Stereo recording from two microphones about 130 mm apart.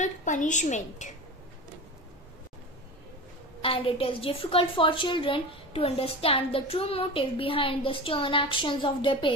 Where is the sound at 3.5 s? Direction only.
45° left (ahead or behind).